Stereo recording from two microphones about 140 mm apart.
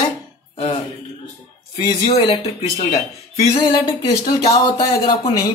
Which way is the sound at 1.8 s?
40° left (ahead or behind).